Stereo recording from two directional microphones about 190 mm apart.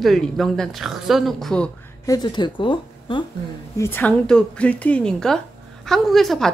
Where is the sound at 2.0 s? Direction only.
20° left (ahead or behind).